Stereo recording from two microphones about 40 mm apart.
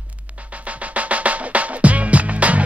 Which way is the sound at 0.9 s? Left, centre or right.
Right.